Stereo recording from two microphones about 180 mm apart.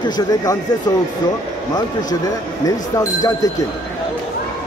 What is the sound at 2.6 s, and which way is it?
Speech, 20° left (ahead or behind).